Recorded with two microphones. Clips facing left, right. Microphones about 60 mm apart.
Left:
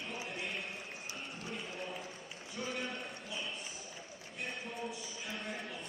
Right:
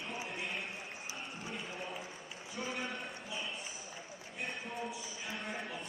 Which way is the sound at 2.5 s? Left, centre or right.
Centre.